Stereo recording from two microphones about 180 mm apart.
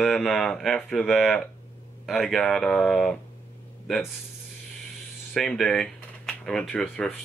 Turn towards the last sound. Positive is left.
turn(degrees=5)  # may be behind; listen again after turning